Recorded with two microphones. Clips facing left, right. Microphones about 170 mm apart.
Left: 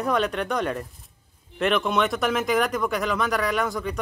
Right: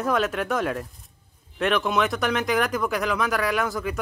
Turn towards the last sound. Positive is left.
turn(degrees=0)  # may be behind; listen again after turning